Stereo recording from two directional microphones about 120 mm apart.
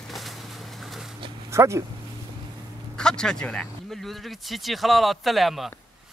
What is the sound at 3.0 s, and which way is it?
Speech, 5° left (ahead or behind).